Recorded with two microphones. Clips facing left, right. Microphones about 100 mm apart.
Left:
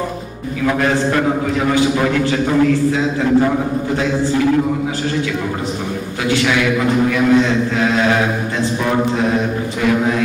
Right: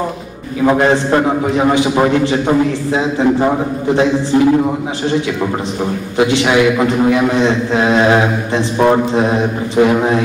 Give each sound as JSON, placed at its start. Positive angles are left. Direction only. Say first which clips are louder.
{"t": 0.7, "sound": "a man's voice", "louder": "right 5 dB", "side_deg": -30}
{"t": 6.1, "sound": "a man's voice", "louder": "right 5 dB", "side_deg": -25}